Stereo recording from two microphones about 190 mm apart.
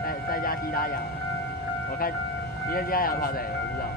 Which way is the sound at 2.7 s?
50° left (ahead or behind).